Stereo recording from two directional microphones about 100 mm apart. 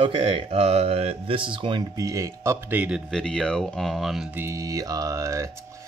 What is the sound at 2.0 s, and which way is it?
Speech, 35° right (ahead or behind).